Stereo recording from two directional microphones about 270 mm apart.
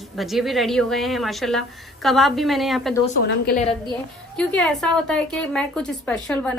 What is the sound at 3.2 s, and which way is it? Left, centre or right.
Speech, left.